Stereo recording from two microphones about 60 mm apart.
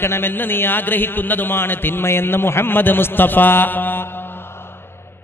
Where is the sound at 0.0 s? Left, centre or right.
Left.